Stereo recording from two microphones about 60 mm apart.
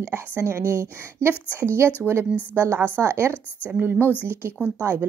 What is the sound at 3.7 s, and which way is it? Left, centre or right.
Speech, right.